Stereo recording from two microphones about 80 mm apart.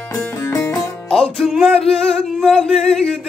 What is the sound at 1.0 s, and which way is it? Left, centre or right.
Music, centre.